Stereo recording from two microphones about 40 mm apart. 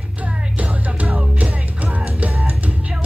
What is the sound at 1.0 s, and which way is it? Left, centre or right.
Music, right.